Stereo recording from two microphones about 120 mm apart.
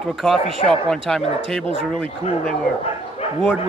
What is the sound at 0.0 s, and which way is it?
Speech, centre (ahead or behind).